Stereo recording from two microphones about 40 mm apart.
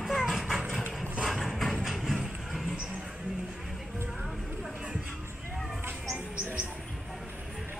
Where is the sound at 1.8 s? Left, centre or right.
Centre.